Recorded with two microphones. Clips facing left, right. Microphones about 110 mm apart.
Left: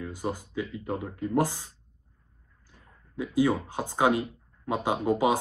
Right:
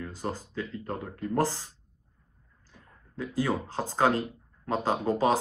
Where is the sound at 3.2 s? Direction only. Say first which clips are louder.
Left 4 dB; 15° left (ahead or behind).